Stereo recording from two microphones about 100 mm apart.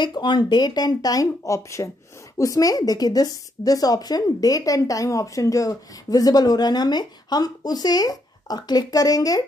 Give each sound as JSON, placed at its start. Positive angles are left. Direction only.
{"t": 0.0, "sound": "a woman's voice", "side_deg": 50}